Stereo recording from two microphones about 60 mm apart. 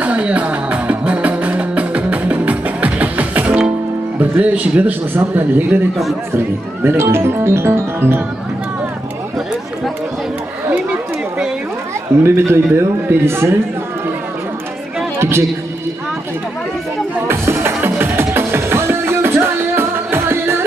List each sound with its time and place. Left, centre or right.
0.0 s music: right
4.2 s a man's voice: right
10.7 s speech: right
12.2 s speech: right
15.1 s a sound: right
17.3 s music: right